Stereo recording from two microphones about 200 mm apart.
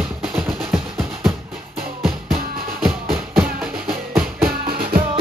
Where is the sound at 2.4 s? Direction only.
45° right (ahead or behind).